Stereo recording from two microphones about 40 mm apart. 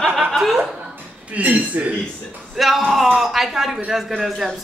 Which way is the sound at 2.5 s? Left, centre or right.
Centre.